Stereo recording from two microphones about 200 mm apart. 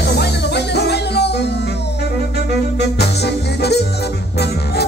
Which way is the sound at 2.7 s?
55° left (ahead or behind).